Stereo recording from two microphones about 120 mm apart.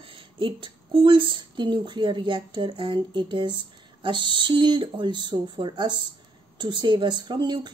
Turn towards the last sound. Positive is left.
turn(degrees=-40)  # may be behind; listen again after turning